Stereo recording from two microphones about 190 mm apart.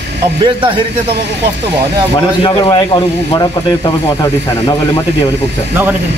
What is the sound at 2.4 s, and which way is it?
Speech, 25° left (ahead or behind).